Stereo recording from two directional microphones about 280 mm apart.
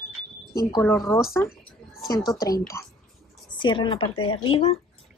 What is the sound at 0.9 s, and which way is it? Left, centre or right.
Speech, centre.